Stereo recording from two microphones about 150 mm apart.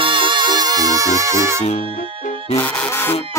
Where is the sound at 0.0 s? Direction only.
30° right (ahead or behind).